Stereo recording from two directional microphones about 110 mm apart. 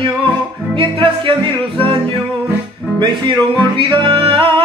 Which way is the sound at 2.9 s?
40° right (ahead or behind).